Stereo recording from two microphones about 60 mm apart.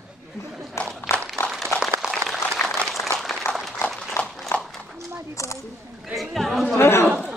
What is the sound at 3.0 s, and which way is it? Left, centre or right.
Applause, left.